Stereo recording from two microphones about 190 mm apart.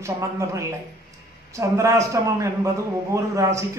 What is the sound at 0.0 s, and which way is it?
A man's voice, 15° right (ahead or behind).